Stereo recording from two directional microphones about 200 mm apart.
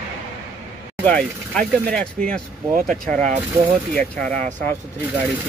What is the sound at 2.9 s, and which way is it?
Speech, 40° right (ahead or behind).